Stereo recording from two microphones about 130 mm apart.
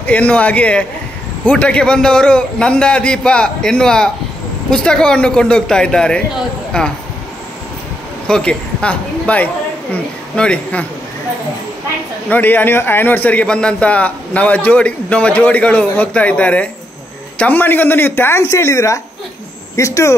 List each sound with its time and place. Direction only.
0.0 s a man's voice: 10° left (ahead or behind)
8.3 s a man's voice: 10° left (ahead or behind)
12.3 s a man's voice: 15° left (ahead or behind)